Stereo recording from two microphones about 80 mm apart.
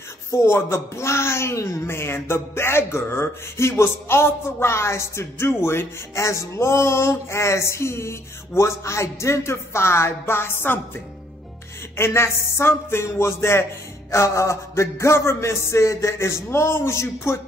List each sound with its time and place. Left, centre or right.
0.3 s speech: left
12.0 s speech: left